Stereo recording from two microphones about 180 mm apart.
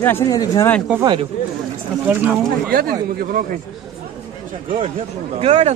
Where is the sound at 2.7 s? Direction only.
55° right (ahead or behind).